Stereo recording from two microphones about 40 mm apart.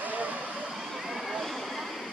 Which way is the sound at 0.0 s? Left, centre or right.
Right.